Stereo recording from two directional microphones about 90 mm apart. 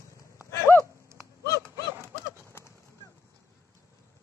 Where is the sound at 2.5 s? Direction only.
30° left (ahead or behind).